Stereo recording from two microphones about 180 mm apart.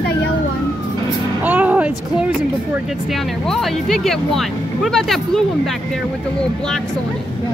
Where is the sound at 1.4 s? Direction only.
10° right (ahead or behind).